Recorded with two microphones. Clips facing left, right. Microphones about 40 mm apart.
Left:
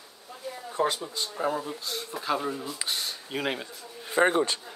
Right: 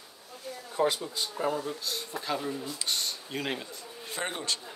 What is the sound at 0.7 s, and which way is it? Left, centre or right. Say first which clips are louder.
Speech: even; centre.